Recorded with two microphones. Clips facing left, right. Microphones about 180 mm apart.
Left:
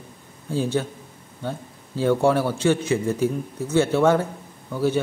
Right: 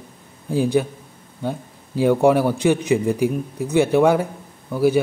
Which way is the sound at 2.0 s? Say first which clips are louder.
Right 4 dB; 15° right (ahead or behind).